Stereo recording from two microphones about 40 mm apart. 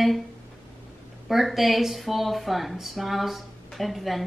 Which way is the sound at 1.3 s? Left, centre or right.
Centre.